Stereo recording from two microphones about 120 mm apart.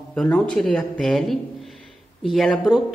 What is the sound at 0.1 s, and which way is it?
Speech, 5° left (ahead or behind).